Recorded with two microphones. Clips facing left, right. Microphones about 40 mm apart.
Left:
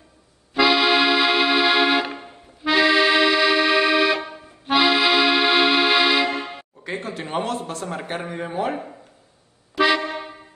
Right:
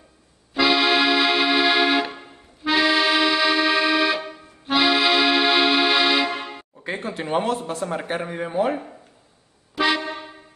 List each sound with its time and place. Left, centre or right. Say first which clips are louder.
0.6 s accordion: left 1 dB; centre
6.8 s a sound: right 1 dB; centre
7.4 s speech: right 2 dB; right
7.8 s speech: right 2 dB; centre